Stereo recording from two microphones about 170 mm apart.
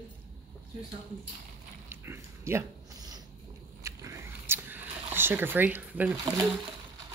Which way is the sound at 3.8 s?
20° right (ahead or behind).